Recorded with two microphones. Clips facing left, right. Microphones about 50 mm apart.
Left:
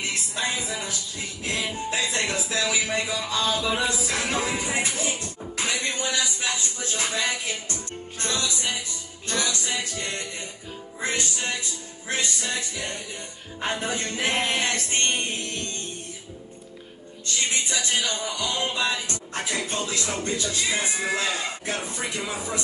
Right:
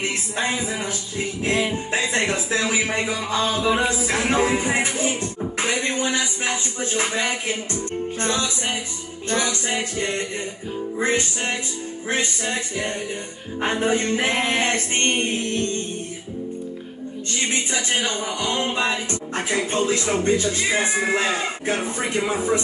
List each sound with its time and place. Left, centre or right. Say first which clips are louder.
0.0 s music: right 4 dB; right
2.0 s a man's voice: right 5 dB; right
17.3 s a man's voice: right 2 dB; right